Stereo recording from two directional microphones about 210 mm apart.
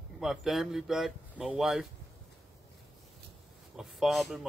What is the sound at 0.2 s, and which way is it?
A man's voice, centre (ahead or behind).